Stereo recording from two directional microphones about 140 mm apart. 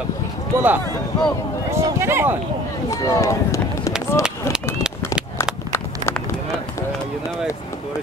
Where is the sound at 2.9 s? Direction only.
20° left (ahead or behind).